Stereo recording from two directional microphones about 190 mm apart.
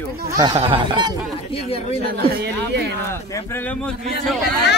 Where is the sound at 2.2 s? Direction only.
55° right (ahead or behind).